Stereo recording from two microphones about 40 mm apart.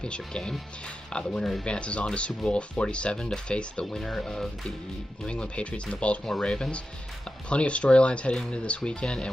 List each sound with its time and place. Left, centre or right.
0.0 s speech: left
3.9 s speech: centre
5.2 s speech: left